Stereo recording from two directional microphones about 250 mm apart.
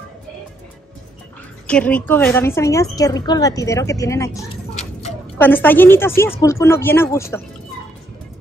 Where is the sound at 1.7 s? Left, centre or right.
Centre.